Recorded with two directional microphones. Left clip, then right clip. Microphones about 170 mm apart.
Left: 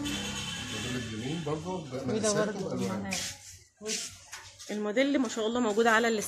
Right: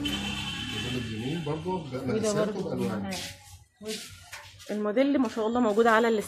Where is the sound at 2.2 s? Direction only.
50° left (ahead or behind).